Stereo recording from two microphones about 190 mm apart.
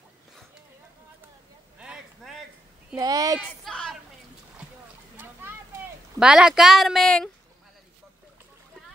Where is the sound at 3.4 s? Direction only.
Centre (ahead or behind).